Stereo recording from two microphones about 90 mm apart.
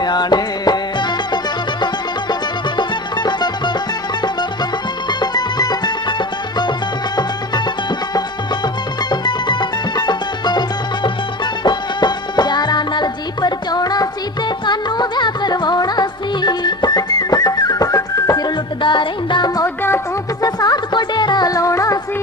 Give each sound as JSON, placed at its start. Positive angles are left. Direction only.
{"t": 0.0, "sound": "music", "side_deg": 50}
{"t": 5.2, "sound": "music", "side_deg": 50}
{"t": 9.1, "sound": "music", "side_deg": 55}
{"t": 18.8, "sound": "music", "side_deg": 65}
{"t": 19.6, "sound": "music", "side_deg": 25}
{"t": 20.4, "sound": "music", "side_deg": 50}